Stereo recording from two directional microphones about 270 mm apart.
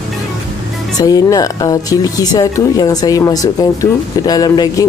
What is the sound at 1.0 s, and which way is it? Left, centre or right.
Speech, centre.